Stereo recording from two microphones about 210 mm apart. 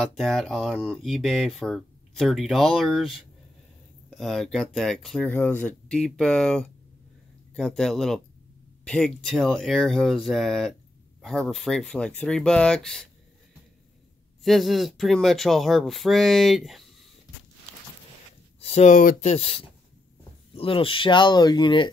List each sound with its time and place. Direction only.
0.0 s speech: centre (ahead or behind)
14.4 s speech: centre (ahead or behind)
18.6 s speech: 30° left (ahead or behind)